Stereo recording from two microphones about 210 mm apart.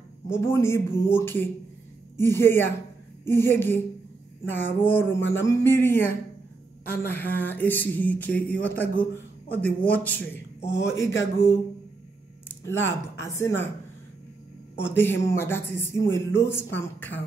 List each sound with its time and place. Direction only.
0.3 s speech: 10° left (ahead or behind)
5.2 s a sound: 60° left (ahead or behind)
5.5 s a man's voice: 10° left (ahead or behind)
12.8 s speech: 10° left (ahead or behind)
14.9 s speech: 10° left (ahead or behind)